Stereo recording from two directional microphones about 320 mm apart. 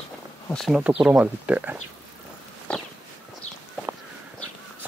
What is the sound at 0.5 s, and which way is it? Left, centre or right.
Speech, centre.